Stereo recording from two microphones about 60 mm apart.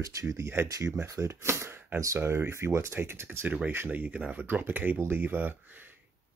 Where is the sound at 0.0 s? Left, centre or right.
Right.